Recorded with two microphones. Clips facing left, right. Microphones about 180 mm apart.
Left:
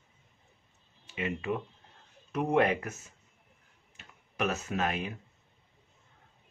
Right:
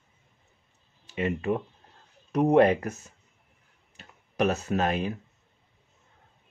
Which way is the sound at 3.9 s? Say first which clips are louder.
Right 9 dB; 35° right (ahead or behind).